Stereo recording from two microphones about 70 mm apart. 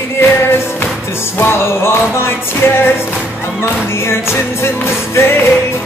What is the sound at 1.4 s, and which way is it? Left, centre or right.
Music, left.